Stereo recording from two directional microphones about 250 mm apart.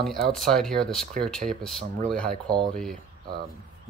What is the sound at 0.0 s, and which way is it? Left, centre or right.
Speech, centre.